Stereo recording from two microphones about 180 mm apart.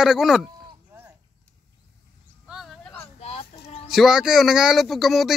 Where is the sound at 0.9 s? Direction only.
10° right (ahead or behind).